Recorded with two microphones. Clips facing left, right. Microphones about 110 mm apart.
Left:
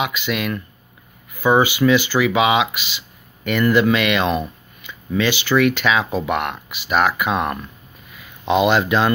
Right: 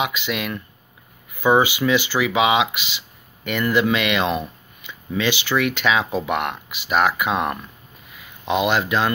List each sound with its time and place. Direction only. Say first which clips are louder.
0.0 s speech: left 2 dB; 20° right (ahead or behind)
8.6 s speech: left 3 dB; 5° right (ahead or behind)